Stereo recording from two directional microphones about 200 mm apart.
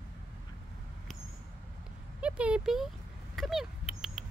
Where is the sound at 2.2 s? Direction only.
5° right (ahead or behind).